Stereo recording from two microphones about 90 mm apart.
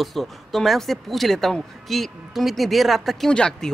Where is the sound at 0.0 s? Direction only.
Centre (ahead or behind).